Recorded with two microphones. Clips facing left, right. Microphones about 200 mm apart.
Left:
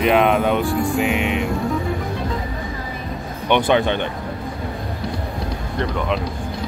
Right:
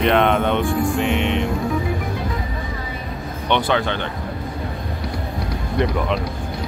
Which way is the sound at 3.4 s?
15° left (ahead or behind).